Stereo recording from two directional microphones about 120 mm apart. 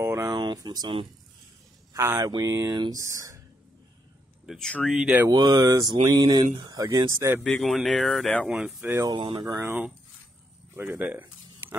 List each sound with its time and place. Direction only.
0.0 s a sound: 25° right (ahead or behind)
0.3 s speech: 35° right (ahead or behind)
2.0 s speech: 25° right (ahead or behind)
4.5 s speech: 5° left (ahead or behind)
5.3 s speech: 30° right (ahead or behind)
7.4 s speech: 5° left (ahead or behind)
8.8 s speech: 20° right (ahead or behind)
9.1 s speech: 40° right (ahead or behind)
9.5 s speech: 20° right (ahead or behind)